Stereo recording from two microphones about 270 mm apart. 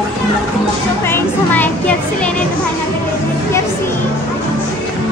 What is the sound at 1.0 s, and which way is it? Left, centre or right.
Music, centre.